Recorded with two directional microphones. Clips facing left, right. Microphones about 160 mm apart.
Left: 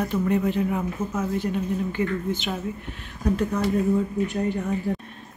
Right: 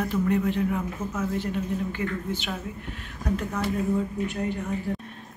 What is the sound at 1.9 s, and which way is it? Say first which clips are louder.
Speech: left 4 dB; 20° left (ahead or behind).